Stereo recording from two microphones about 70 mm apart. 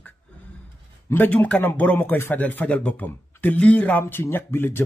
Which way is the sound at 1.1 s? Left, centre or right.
Left.